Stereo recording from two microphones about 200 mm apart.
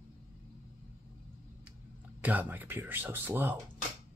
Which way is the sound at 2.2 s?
10° right (ahead or behind).